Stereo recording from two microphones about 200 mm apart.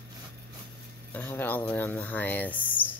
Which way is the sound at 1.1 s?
10° left (ahead or behind).